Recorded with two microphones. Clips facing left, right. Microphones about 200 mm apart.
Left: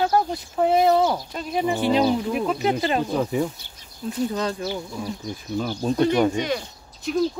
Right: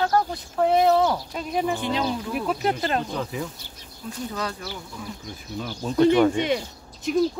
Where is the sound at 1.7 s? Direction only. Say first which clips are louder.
Left 6 dB; 15° left (ahead or behind).